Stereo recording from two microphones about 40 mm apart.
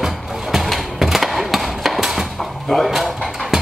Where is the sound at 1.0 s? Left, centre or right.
Centre.